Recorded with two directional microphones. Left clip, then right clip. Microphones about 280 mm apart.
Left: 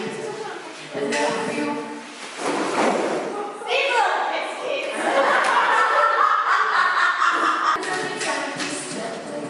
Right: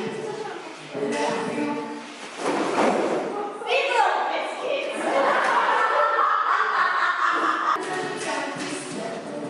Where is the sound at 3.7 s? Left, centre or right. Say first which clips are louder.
Left 1 dB; centre.